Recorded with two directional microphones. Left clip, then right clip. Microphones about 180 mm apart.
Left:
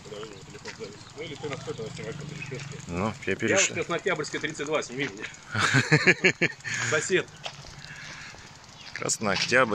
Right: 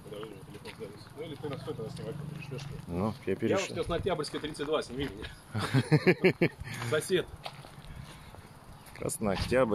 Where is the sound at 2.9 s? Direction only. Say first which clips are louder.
Left 4 dB; 5° right (ahead or behind).